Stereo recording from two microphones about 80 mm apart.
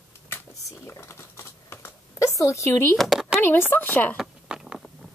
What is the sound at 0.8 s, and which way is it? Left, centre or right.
Typing, left.